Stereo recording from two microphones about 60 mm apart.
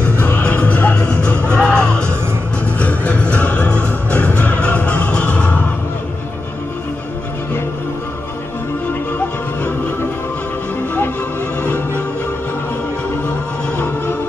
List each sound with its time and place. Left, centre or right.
0.0 s music: left
2.6 s music: left